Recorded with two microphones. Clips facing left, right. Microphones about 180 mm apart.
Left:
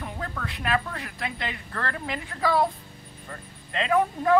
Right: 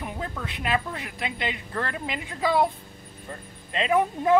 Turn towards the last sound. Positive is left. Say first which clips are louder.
# even
turn(degrees=-20)  # may be behind; listen again after turning